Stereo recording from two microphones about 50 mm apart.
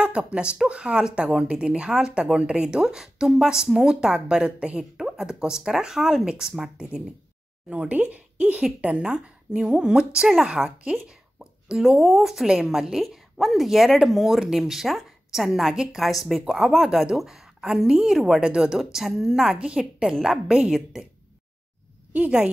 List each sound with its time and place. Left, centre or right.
0.0 s a woman's voice: centre
7.7 s a woman's voice: right; by 18.5 s centre
18.5 s a woman's voice: centre
19.5 s a woman's voice: centre
20.1 s a woman's voice: centre
22.1 s a woman's voice: right